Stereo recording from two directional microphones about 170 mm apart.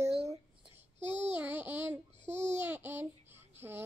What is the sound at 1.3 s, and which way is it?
A woman's voice, 10° right (ahead or behind).